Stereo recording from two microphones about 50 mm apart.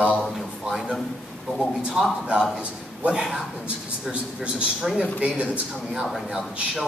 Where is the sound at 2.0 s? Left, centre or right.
Centre.